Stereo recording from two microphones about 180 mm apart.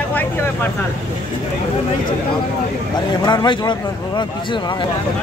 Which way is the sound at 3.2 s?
25° left (ahead or behind).